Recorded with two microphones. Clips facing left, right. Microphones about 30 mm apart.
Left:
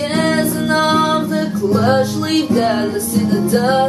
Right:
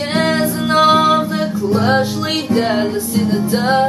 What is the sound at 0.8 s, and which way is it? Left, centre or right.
Music, centre.